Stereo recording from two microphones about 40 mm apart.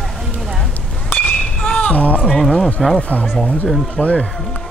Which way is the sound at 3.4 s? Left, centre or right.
Centre.